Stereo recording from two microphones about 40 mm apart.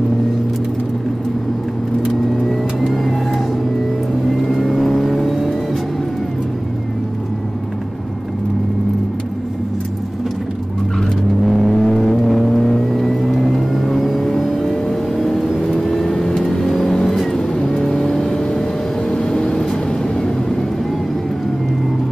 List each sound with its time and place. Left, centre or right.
2.5 s vehicle: centre
4.5 s vehicle: centre
11.4 s vehicle: centre
11.7 s vehicle: centre